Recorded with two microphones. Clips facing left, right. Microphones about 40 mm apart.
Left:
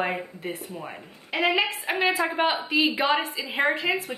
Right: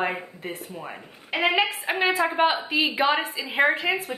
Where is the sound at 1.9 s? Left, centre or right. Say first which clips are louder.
Right 1 dB; centre.